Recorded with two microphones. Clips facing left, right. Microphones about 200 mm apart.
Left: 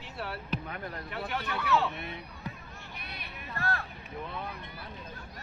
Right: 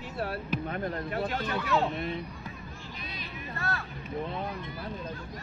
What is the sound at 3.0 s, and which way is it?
Hubbub, 60° left (ahead or behind).